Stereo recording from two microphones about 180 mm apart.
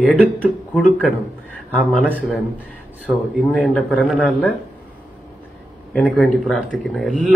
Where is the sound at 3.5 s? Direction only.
Centre (ahead or behind).